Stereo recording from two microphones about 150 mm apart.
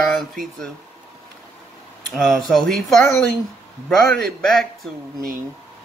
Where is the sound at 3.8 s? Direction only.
Centre (ahead or behind).